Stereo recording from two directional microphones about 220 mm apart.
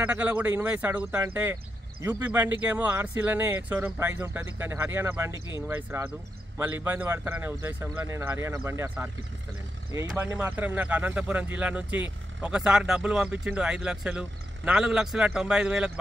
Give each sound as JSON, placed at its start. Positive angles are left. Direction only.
{"t": 0.0, "sound": "speech", "side_deg": -5}